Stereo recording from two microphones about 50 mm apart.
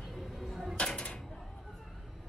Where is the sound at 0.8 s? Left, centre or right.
Left.